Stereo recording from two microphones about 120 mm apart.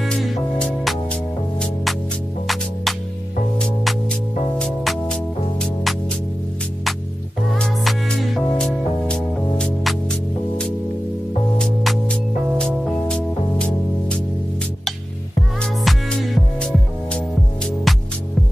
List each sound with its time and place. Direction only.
0.0 s music: 5° left (ahead or behind)
2.4 s music: centre (ahead or behind)
7.5 s music: 5° left (ahead or behind)
11.5 s music: 5° left (ahead or behind)
15.6 s music: centre (ahead or behind)